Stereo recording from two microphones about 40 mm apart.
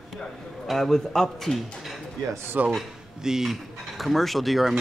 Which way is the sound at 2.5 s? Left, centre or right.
Right.